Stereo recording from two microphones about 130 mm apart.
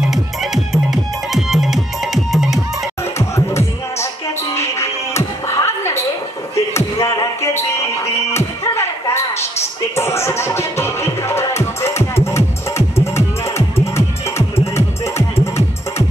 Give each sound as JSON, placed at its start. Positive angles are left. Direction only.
{"t": 0.0, "sound": "music", "side_deg": 0}
{"t": 3.2, "sound": "music", "side_deg": 20}
{"t": 7.7, "sound": "a sound", "side_deg": 20}
{"t": 9.9, "sound": "music", "side_deg": 20}
{"t": 15.1, "sound": "music", "side_deg": 20}